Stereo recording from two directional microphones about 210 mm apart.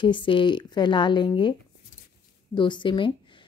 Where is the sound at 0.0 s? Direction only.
25° left (ahead or behind).